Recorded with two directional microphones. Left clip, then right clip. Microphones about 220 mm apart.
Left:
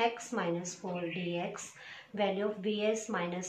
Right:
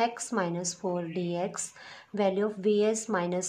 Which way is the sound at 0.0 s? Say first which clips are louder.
Right 3 dB; 55° right (ahead or behind).